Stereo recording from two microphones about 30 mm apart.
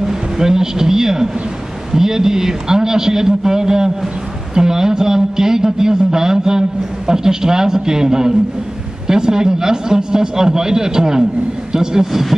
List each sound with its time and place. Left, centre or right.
0.0 s a man's voice: centre